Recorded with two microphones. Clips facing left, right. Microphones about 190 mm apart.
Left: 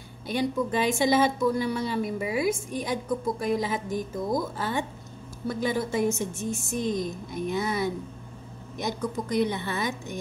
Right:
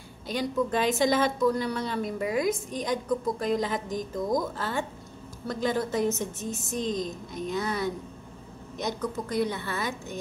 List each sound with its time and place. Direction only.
0.6 s a woman's voice: 10° left (ahead or behind)